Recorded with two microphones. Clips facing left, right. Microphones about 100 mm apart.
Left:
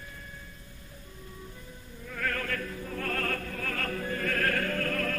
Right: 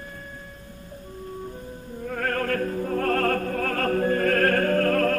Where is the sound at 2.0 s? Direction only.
45° right (ahead or behind).